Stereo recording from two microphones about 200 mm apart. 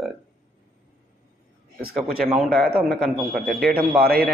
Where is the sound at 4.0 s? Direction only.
45° right (ahead or behind).